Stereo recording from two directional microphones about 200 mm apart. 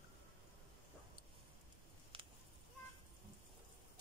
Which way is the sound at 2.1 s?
25° right (ahead or behind).